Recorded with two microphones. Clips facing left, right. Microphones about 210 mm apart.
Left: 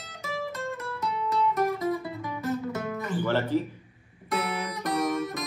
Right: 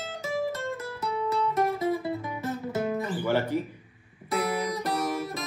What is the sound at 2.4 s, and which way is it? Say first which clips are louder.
Music: left 2 dB; 30° right (ahead or behind).